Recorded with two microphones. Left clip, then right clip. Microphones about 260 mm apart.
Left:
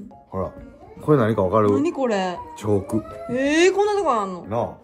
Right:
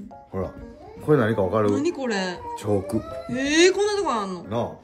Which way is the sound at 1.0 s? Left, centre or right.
Left.